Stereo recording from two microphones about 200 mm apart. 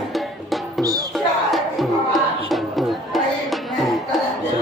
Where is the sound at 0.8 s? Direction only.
20° right (ahead or behind).